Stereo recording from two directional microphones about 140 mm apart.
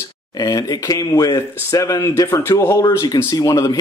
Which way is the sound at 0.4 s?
25° left (ahead or behind).